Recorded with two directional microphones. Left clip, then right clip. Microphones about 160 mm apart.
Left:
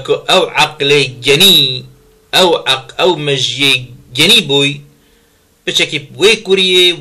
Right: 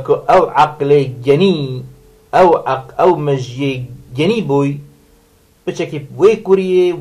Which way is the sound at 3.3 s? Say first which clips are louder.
Left 8 dB; 5° left (ahead or behind).